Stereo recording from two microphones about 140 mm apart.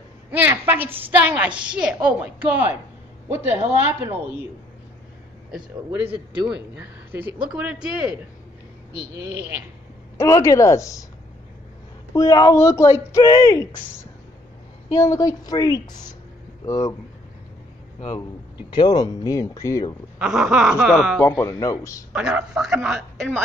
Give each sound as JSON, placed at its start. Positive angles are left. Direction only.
{"t": 0.3, "sound": "speech", "side_deg": -15}
{"t": 5.9, "sound": "speech", "side_deg": -15}
{"t": 10.1, "sound": "speech", "side_deg": 20}
{"t": 12.1, "sound": "speech", "side_deg": 25}
{"t": 15.0, "sound": "speech", "side_deg": 25}
{"t": 18.7, "sound": "speech", "side_deg": 30}
{"t": 20.2, "sound": "a man's voice", "side_deg": -5}
{"t": 21.2, "sound": "speech", "side_deg": 20}
{"t": 22.1, "sound": "a man's voice", "side_deg": -5}